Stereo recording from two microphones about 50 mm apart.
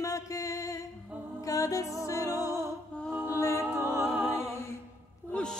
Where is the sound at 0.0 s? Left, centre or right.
Left.